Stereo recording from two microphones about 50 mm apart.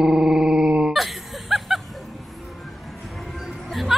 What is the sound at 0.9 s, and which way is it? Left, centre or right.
Chuckle, centre.